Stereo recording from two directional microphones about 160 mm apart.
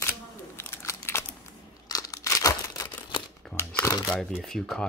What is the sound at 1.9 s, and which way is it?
Crumpling, 20° left (ahead or behind).